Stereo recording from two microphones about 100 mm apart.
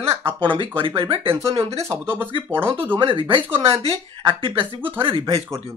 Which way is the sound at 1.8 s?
20° right (ahead or behind).